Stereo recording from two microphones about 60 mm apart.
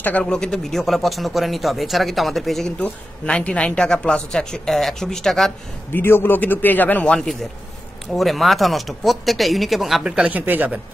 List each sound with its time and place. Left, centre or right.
0.2 s speech: centre
2.8 s speech: centre
5.9 s a man's voice: left
8.1 s speech: centre
10.2 s speech: right